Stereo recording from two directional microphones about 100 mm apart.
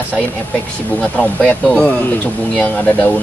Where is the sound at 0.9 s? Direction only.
15° left (ahead or behind).